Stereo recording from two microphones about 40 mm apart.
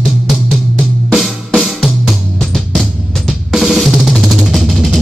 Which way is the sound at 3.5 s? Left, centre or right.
Centre.